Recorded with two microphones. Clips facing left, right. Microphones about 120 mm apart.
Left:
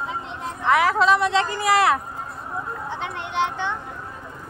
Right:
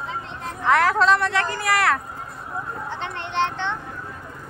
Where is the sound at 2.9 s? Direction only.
10° left (ahead or behind).